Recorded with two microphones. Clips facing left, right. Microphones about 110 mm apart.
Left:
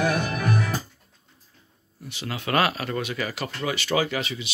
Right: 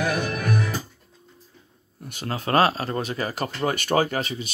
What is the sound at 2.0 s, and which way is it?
Speech, 45° right (ahead or behind).